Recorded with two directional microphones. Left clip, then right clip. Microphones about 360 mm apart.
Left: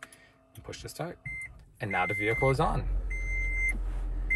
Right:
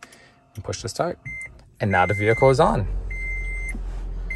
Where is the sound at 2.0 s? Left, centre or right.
Right.